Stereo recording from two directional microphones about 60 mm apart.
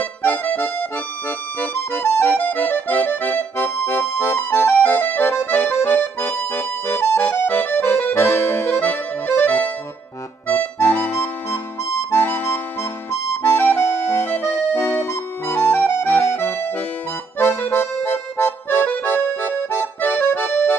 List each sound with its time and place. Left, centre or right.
0.0 s accordion: left
1.6 s music: left
2.3 s accordion: left
6.5 s music: left
7.2 s accordion: left
10.5 s music: left
13.4 s accordion: left
16.1 s music: left
17.4 s accordion: left